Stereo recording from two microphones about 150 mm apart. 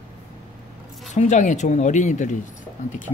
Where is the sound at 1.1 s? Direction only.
55° left (ahead or behind).